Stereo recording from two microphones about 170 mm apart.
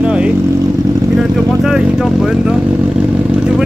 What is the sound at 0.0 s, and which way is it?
Vehicle, 5° right (ahead or behind).